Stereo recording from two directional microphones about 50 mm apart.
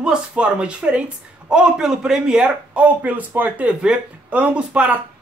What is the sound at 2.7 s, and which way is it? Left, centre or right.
Speech, right.